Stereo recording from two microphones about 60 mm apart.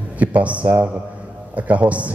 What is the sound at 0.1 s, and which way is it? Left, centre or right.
Speech, right.